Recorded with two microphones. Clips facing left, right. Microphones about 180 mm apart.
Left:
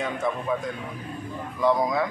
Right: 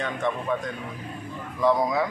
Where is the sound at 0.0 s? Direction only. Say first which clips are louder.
Even; 5° left (ahead or behind).